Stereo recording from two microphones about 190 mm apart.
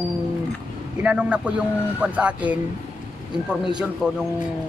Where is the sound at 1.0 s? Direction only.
5° right (ahead or behind).